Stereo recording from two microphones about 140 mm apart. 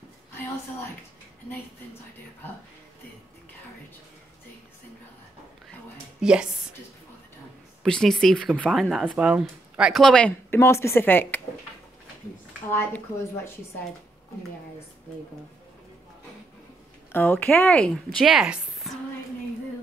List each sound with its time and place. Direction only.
6.2 s speech: 5° right (ahead or behind)
7.8 s speech: 5° left (ahead or behind)
10.5 s speech: 20° left (ahead or behind)
12.7 s speech: 15° left (ahead or behind)
17.1 s speech: 15° left (ahead or behind); by 18.9 s 5° right (ahead or behind)